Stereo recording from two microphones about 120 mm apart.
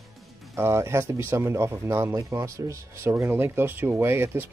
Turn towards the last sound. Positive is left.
turn(degrees=-20)  # may be behind; listen again after turning